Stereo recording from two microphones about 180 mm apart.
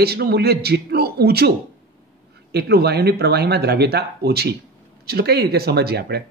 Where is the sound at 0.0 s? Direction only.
60° right (ahead or behind).